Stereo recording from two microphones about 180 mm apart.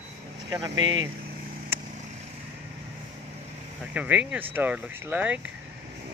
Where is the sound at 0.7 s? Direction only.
90° right.